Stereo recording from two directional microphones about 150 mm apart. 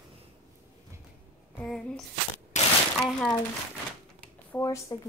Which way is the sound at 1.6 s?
5° left (ahead or behind).